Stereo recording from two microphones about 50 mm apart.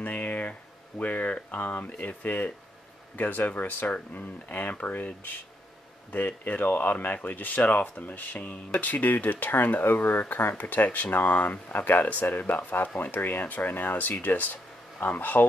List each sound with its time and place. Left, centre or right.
0.0 s speech: left